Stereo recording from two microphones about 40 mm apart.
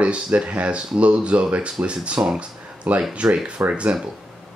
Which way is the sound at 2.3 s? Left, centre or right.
Right.